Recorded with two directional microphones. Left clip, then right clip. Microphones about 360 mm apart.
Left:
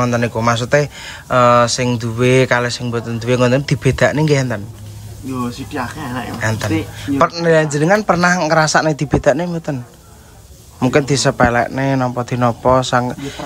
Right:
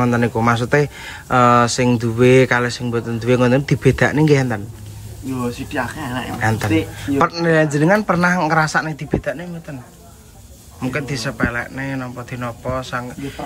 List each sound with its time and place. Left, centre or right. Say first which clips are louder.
0.0 s speech: left 1 dB; centre
5.7 s speech: even; centre
10.8 s speech: left 9 dB; centre